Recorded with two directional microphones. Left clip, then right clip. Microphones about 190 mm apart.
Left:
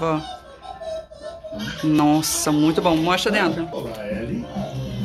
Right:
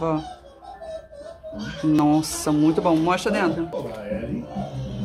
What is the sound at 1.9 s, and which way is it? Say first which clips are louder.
Speech: left 1 dB; centre (ahead or behind).